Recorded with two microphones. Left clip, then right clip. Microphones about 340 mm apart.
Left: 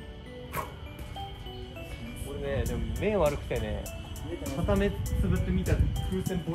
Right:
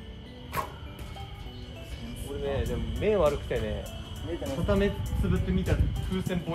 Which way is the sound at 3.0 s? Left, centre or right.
Left.